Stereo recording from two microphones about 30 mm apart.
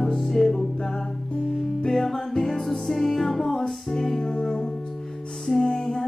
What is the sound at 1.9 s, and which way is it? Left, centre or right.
Music, centre.